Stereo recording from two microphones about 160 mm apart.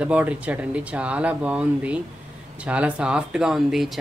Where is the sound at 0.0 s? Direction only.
10° right (ahead or behind).